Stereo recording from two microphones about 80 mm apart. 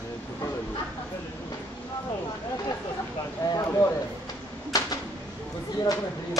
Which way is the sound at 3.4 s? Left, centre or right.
Left.